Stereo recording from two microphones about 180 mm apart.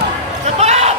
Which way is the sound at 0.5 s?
35° right (ahead or behind).